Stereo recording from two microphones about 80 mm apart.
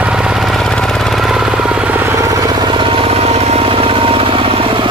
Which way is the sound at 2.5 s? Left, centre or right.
Right.